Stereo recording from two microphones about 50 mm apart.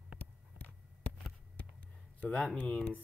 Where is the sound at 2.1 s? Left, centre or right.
Left.